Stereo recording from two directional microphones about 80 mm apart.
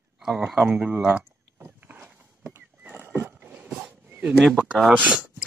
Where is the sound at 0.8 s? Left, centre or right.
Centre; by 2.6 s right.